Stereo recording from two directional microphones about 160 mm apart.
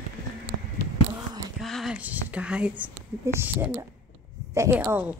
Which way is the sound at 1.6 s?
Centre (ahead or behind).